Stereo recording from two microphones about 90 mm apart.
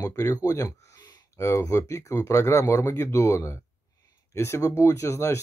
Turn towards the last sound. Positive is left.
turn(degrees=30)  # may be behind; listen again after turning